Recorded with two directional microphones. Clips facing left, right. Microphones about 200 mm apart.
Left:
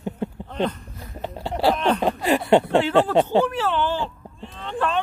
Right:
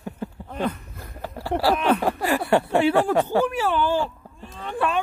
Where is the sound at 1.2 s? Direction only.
20° left (ahead or behind).